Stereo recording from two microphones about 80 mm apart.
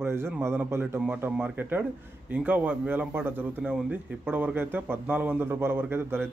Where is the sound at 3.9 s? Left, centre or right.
Right.